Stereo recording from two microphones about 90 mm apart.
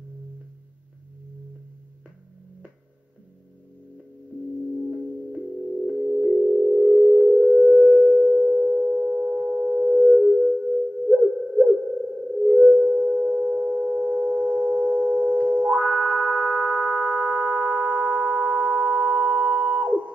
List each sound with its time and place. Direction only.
5.9 s singing bowl: 15° right (ahead or behind); by 7.9 s centre (ahead or behind)
7.9 s sine wave: 15° right (ahead or behind)
12.6 s a sound: 15° right (ahead or behind)